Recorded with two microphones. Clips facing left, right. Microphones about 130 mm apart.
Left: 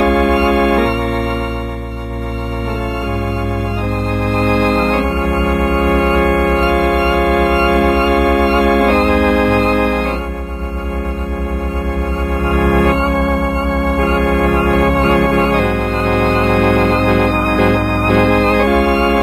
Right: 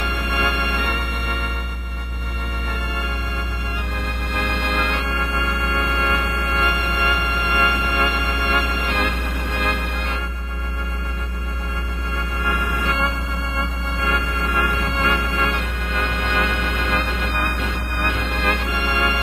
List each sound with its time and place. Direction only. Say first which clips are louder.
0.0 s organ: left 13 dB; 60° left (ahead or behind)
4.3 s organ: left 12 dB; 50° left (ahead or behind)
9.6 s organ: left 12 dB; 50° left (ahead or behind)
12.4 s music: left 12 dB; 55° left (ahead or behind)
13.1 s organ: left 13 dB; 60° left (ahead or behind)
15.1 s music: left 12 dB; 55° left (ahead or behind)
17.5 s organ: left 15 dB; 60° left (ahead or behind)